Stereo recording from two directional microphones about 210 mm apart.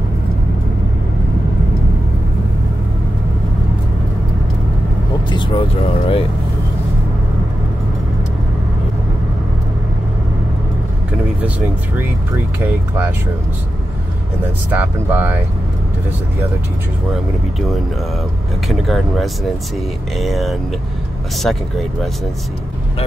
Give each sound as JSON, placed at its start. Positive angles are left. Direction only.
{"t": 5.3, "sound": "speech", "side_deg": 25}
{"t": 12.6, "sound": "speech", "side_deg": -10}
{"t": 14.7, "sound": "speech", "side_deg": -10}
{"t": 18.7, "sound": "speech", "side_deg": 0}